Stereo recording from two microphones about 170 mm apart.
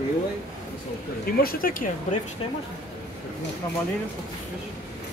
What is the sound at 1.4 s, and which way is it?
Speech, 60° left (ahead or behind).